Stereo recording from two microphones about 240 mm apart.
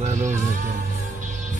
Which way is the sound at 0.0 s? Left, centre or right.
Right.